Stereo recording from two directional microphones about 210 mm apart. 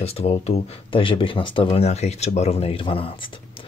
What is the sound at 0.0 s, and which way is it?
Speech, 30° left (ahead or behind).